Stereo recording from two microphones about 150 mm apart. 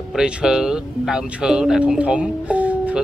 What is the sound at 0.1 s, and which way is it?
Speech, 5° right (ahead or behind).